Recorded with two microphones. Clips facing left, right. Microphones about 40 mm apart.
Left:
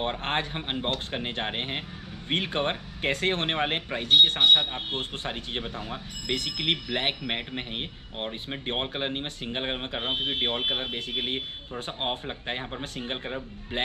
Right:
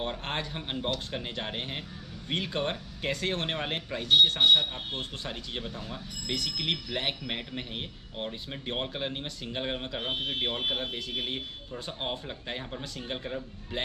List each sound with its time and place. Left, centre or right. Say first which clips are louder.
0.0 s speech: left 5 dB; left